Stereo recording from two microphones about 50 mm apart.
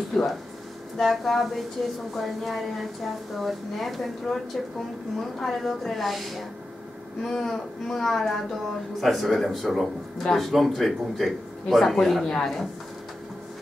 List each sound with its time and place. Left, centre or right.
0.1 s speech: centre
1.8 s speech: centre
2.1 s speech: centre